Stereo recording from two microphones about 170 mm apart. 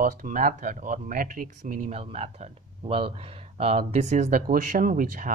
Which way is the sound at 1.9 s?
35° right (ahead or behind).